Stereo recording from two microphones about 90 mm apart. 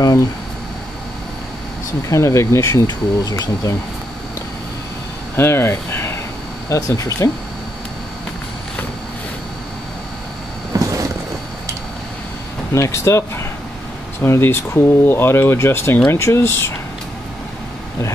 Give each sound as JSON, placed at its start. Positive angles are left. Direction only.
{"t": 2.0, "sound": "speech", "side_deg": 35}
{"t": 2.9, "sound": "speech", "side_deg": 45}
{"t": 5.3, "sound": "speech", "side_deg": 25}
{"t": 6.7, "sound": "speech", "side_deg": 40}
{"t": 10.7, "sound": "a sound", "side_deg": -40}
{"t": 12.7, "sound": "speech", "side_deg": 35}